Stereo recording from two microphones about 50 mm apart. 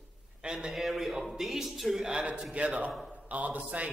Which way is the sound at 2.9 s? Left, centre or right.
Centre.